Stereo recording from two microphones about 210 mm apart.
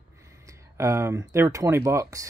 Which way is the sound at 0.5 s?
15° right (ahead or behind).